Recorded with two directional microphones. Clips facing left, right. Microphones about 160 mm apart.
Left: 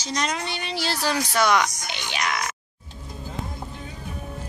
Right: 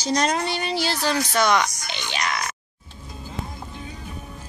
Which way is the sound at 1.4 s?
10° left (ahead or behind).